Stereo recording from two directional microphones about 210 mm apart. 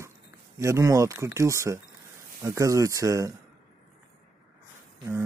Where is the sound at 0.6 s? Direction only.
15° right (ahead or behind).